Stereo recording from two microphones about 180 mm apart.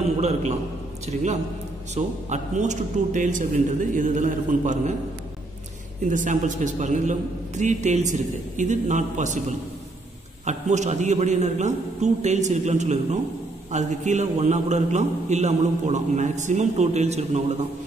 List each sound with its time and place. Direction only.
0.2 s a man's voice: 40° right (ahead or behind)
6.0 s a man's voice: 45° right (ahead or behind)